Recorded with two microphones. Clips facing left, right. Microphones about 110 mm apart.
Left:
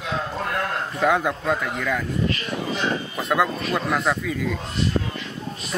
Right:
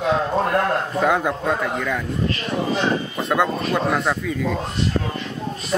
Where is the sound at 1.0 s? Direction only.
Centre (ahead or behind).